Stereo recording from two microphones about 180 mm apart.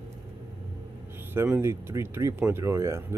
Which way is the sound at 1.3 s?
15° right (ahead or behind).